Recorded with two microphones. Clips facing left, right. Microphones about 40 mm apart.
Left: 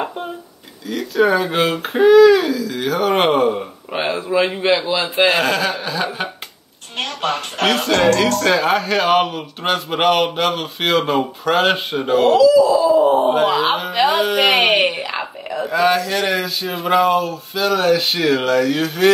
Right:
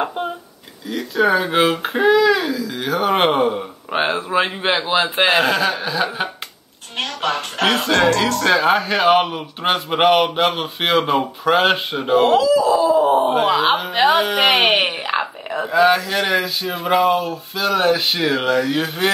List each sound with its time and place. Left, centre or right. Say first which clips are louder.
1.1 s speech: even; centre
3.9 s a man's voice: even; right
5.3 s speech: right 1 dB; centre
12.4 s speech: left 3 dB; right
13.2 s speech: left 1 dB; centre
14.6 s speech: left 1 dB; right
15.0 s a sound: right 3 dB; right
15.7 s speech: right 1 dB; centre
17.7 s speech: even; centre